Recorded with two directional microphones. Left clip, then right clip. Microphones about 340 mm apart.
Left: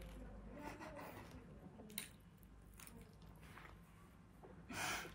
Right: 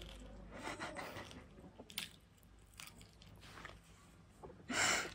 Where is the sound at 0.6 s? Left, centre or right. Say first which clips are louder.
Right 7 dB; right.